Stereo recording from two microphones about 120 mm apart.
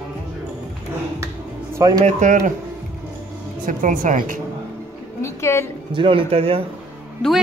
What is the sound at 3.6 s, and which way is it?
Speech, 90° right.